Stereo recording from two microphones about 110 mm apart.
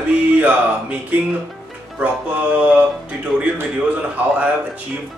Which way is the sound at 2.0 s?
10° right (ahead or behind).